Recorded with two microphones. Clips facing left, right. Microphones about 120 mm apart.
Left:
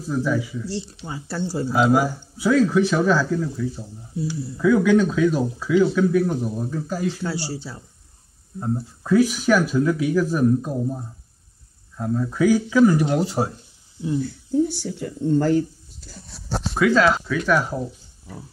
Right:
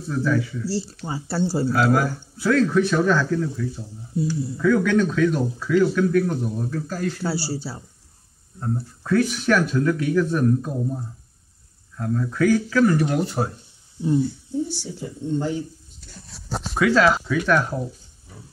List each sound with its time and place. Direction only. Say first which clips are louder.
0.0 s speech: even; 5° left (ahead or behind)
0.7 s speech: right 3 dB; 5° right (ahead or behind)
1.9 s speech: left 2 dB; 5° left (ahead or behind)
7.2 s speech: right 2 dB; 5° right (ahead or behind)
8.5 s speech: left 2 dB; 15° left (ahead or behind)
15.0 s speech: left 5 dB; 55° left (ahead or behind)
16.0 s speech: left 4 dB; centre (ahead or behind)